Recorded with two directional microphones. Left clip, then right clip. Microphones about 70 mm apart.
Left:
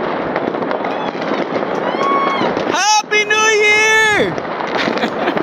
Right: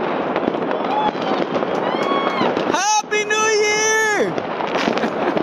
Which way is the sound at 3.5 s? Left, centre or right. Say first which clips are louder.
Left 7 dB; left.